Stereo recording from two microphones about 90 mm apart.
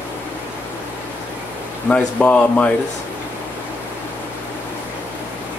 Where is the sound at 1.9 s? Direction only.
15° left (ahead or behind).